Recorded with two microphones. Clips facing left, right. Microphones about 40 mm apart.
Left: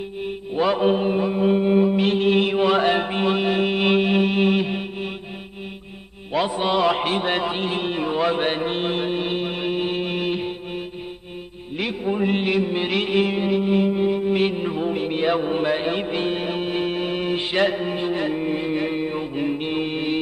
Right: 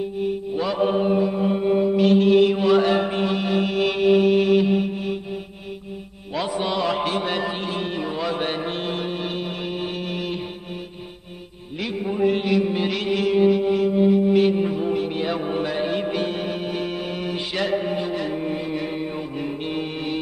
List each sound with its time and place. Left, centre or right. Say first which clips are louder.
0.6 s mantra: left 3 dB; left
6.3 s mantra: left 3 dB; left
6.7 s a sound: left 4 dB; left
12.0 s music: right 2 dB; left
18.4 s mantra: left 3 dB; left